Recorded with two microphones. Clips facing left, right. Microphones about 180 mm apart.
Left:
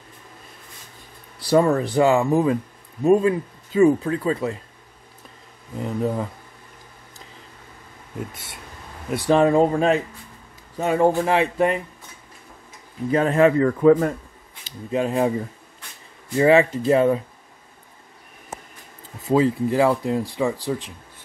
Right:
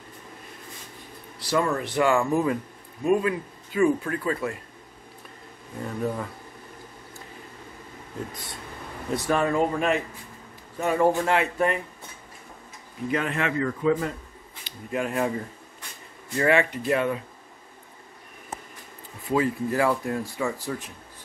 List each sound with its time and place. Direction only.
1.6 s speech: 35° left (ahead or behind)
2.0 s speech: 20° left (ahead or behind)
5.8 s speech: 20° left (ahead or behind)
9.2 s speech: 30° left (ahead or behind)
13.1 s speech: 35° left (ahead or behind)
13.7 s speech: 50° left (ahead or behind)
14.9 s speech: 25° left (ahead or behind)
16.3 s speech: 30° left (ahead or behind)
19.3 s speech: 20° left (ahead or behind)